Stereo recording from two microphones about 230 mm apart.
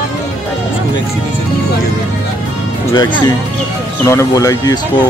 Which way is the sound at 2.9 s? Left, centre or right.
Centre.